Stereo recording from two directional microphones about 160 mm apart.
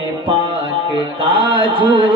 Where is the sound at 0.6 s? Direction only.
30° right (ahead or behind).